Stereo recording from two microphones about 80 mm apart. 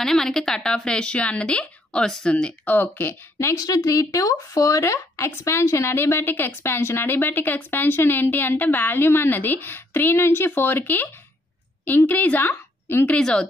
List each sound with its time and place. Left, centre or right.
0.0 s a woman's voice: centre; by 3.5 s left
3.5 s speech: left
12.1 s a woman's voice: left
13.1 s a woman's voice: centre